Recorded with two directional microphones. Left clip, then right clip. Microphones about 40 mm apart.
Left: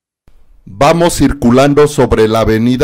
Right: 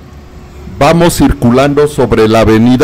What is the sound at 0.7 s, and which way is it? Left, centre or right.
Speech, right.